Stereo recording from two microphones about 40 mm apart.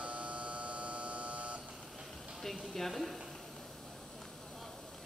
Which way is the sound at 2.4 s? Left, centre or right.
Centre.